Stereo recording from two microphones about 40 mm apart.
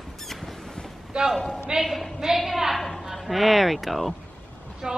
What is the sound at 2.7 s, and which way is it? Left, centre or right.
A woman's voice, centre.